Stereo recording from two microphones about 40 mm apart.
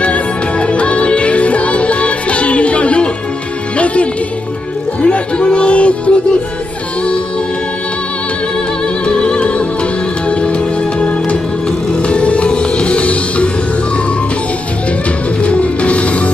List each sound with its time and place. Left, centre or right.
0.0 s music: left
9.0 s music: left
15.4 s music: left